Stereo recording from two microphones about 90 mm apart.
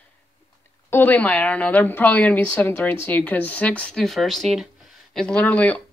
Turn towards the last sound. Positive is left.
turn(degrees=15)  # may be behind; listen again after turning